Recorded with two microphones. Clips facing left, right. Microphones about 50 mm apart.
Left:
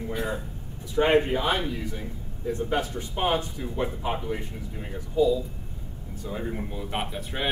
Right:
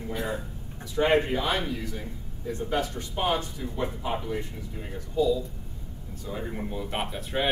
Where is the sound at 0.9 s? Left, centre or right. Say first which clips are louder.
Left 2 dB; left.